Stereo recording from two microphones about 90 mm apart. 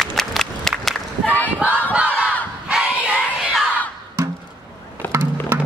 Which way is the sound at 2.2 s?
10° right (ahead or behind).